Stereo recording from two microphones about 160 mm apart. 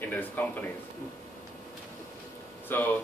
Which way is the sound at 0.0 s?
10° left (ahead or behind).